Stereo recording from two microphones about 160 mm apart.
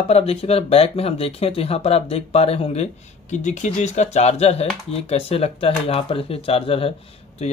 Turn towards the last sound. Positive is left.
turn(degrees=35)  # may be behind; listen again after turning